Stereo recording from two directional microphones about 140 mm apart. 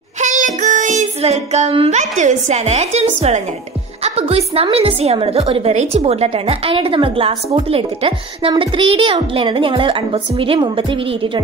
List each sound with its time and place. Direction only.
0.2 s child singing: 65° right (ahead or behind); by 2.0 s 45° right (ahead or behind)
2.0 s a woman's voice: 60° right (ahead or behind); by 11.4 s 35° right (ahead or behind)